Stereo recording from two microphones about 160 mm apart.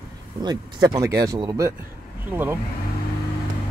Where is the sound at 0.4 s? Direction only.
25° right (ahead or behind).